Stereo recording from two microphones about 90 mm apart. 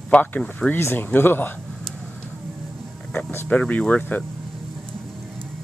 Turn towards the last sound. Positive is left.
turn(degrees=15)  # may be behind; listen again after turning